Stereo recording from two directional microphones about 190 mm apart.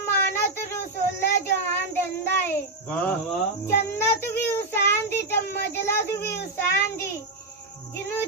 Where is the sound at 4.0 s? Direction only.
10° left (ahead or behind).